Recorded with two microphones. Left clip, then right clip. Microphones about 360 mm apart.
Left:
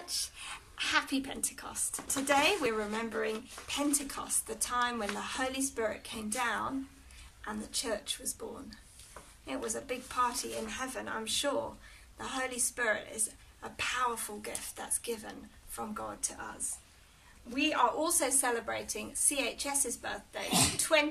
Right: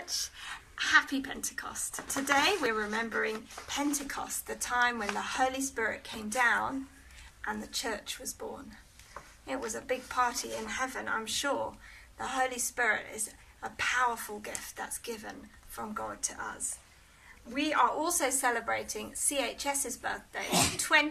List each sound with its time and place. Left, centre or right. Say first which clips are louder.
0.1 s a woman's voice: right 1 dB; centre